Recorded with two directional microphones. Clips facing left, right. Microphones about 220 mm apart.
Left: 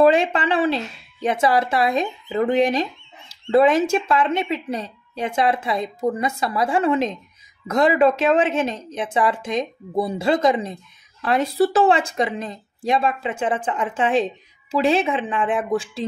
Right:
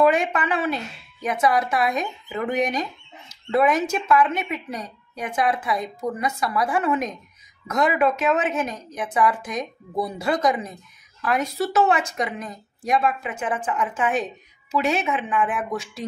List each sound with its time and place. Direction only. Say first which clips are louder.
0.0 s speech: left 3 dB; 30° left (ahead or behind)